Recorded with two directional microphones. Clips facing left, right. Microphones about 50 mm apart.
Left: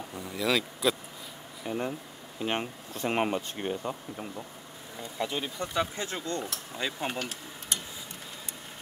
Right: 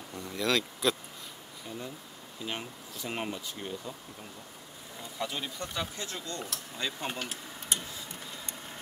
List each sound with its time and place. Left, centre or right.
0.1 s speech: centre
1.7 s speech: left
5.2 s speech: centre
6.8 s speech: centre